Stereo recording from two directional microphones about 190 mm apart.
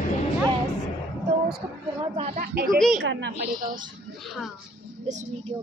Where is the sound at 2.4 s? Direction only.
55° right (ahead or behind).